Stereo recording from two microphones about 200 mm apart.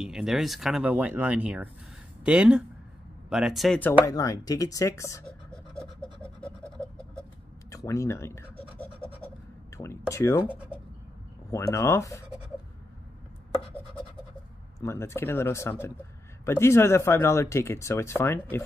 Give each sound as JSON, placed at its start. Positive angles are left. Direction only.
{"t": 0.0, "sound": "speech", "side_deg": -5}
{"t": 4.0, "sound": "speech", "side_deg": 15}
{"t": 5.2, "sound": "a sound", "side_deg": 5}
{"t": 7.7, "sound": "speech", "side_deg": 15}
{"t": 8.5, "sound": "scratch", "side_deg": 30}
{"t": 9.8, "sound": "speech", "side_deg": 15}
{"t": 11.5, "sound": "speech", "side_deg": 15}
{"t": 14.8, "sound": "speech", "side_deg": 15}